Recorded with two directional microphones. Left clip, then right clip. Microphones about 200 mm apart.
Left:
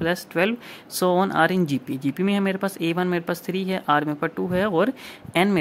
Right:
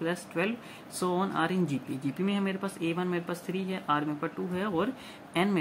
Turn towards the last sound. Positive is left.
turn(degrees=50)  # may be behind; listen again after turning